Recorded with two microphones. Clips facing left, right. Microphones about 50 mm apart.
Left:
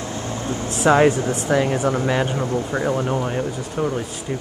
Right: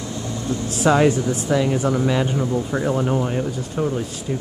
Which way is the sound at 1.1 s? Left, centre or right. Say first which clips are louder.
Left 1 dB; left.